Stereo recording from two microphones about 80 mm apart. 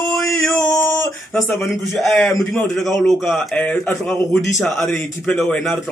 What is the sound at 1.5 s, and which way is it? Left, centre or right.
A man's voice, centre.